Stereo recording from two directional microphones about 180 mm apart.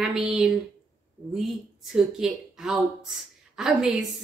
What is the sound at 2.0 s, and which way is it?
A woman's voice, 5° right (ahead or behind).